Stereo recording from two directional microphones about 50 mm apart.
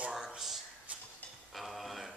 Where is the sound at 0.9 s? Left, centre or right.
Right.